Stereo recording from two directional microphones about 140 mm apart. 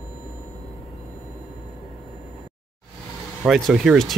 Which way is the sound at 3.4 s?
Centre (ahead or behind).